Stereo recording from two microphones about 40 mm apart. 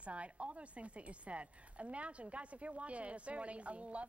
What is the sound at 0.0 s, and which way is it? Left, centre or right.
A woman's voice, right.